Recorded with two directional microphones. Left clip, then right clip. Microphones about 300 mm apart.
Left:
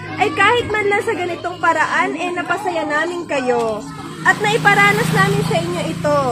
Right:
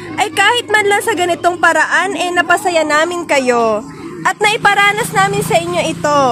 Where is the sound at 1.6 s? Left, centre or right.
Right.